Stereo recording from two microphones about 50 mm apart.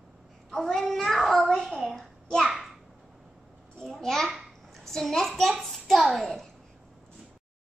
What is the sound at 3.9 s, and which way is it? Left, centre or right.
A woman's voice, centre.